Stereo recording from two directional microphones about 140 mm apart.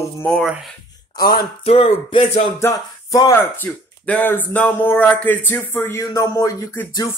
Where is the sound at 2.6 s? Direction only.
20° left (ahead or behind).